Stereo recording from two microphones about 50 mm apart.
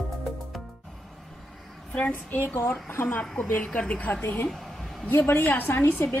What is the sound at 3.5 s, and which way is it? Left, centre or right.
Speech, left.